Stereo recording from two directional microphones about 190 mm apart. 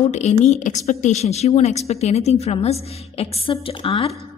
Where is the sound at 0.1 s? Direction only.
35° left (ahead or behind).